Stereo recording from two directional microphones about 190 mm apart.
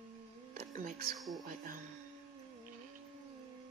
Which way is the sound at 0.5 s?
45° right (ahead or behind).